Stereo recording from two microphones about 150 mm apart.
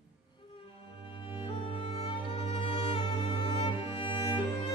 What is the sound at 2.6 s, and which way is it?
Music, 40° left (ahead or behind).